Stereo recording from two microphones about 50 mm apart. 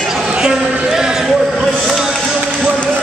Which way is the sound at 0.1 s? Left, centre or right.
Centre.